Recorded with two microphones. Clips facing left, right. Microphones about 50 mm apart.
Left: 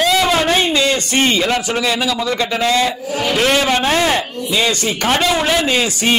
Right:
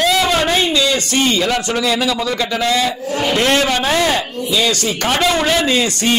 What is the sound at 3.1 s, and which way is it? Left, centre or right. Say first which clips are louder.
Speech: right 1 dB; centre.